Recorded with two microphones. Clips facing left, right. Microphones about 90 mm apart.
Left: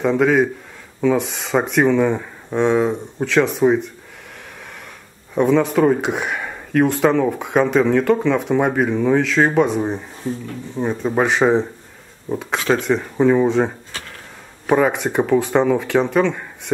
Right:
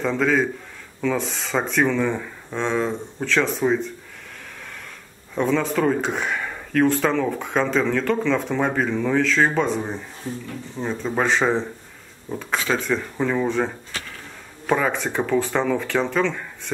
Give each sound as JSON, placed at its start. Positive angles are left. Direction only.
{"t": 0.0, "sound": "speech", "side_deg": 15}
{"t": 5.3, "sound": "speech", "side_deg": 15}
{"t": 14.7, "sound": "speech", "side_deg": 15}